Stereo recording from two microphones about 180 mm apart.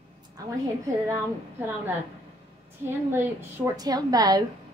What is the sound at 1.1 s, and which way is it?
A woman's voice, 10° right (ahead or behind).